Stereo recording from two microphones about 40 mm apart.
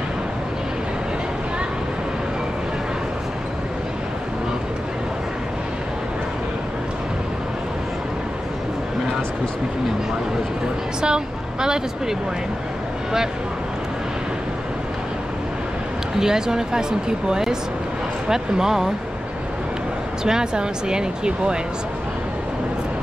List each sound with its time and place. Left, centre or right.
11.0 s speech: centre
16.2 s speech: centre
20.2 s speech: centre